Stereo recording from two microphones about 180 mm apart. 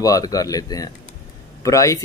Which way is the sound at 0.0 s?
20° left (ahead or behind).